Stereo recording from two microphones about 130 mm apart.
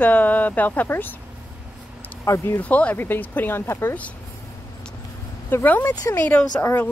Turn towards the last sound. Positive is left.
turn(degrees=20)  # may be behind; listen again after turning